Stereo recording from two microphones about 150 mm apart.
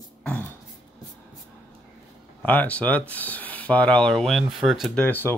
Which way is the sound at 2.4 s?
10° left (ahead or behind).